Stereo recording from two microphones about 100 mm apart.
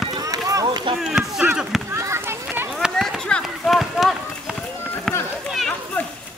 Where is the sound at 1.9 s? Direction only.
30° right (ahead or behind).